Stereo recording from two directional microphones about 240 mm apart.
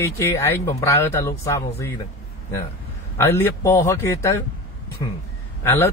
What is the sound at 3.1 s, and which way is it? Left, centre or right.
Speech, centre.